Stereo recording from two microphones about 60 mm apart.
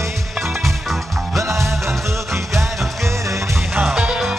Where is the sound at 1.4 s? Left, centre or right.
Right.